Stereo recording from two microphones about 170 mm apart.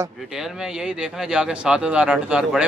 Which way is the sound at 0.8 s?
5° right (ahead or behind).